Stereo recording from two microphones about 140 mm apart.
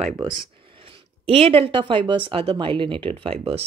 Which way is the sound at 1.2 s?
45° right (ahead or behind).